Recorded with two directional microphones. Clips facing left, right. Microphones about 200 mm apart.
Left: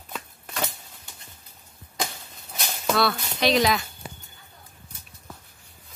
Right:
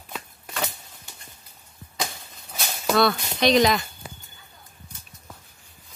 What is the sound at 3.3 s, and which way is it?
Speech, 5° left (ahead or behind).